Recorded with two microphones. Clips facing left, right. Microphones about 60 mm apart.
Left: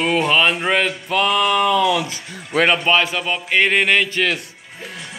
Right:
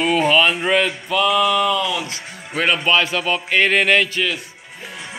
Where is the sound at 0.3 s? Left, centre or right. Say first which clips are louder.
Right 1 dB; left.